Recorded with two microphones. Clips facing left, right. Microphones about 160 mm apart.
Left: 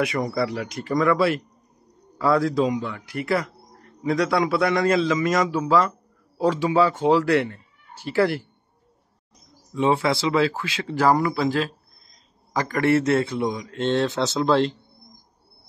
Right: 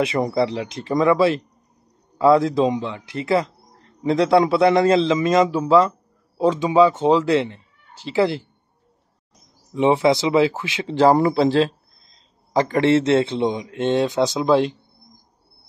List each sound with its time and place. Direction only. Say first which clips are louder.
0.0 s speech: right 4 dB; 25° right (ahead or behind)
9.8 s speech: right 4 dB; 20° right (ahead or behind)